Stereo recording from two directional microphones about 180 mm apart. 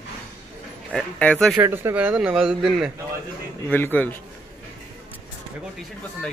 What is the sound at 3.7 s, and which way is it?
Speech, 10° left (ahead or behind).